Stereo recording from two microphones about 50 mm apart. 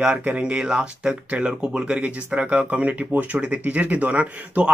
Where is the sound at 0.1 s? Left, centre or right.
Right.